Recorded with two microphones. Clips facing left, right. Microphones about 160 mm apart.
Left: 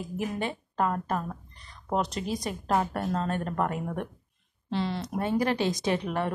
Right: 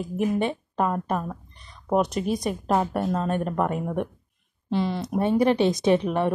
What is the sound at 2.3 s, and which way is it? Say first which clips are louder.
Speech: right 3 dB; 20° right (ahead or behind).